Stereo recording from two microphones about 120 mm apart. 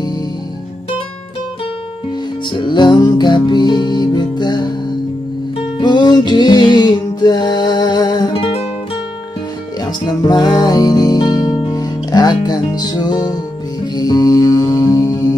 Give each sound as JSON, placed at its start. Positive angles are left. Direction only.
{"t": 2.5, "sound": "music", "side_deg": 40}
{"t": 5.8, "sound": "music", "side_deg": 40}
{"t": 8.3, "sound": "music", "side_deg": 50}
{"t": 10.2, "sound": "music", "side_deg": 35}